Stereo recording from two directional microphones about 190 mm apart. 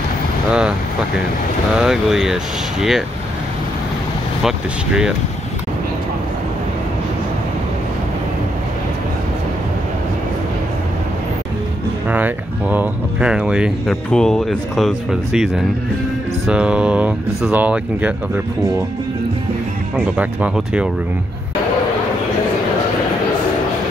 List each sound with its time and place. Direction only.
0.5 s speech: 5° right (ahead or behind)
1.8 s speech: centre (ahead or behind)
4.4 s speech: 5° right (ahead or behind)
12.1 s speech: 10° right (ahead or behind)
20.2 s speech: 5° right (ahead or behind)